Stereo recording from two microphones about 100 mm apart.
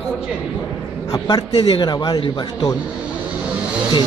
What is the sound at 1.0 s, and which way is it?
Speech, 40° left (ahead or behind).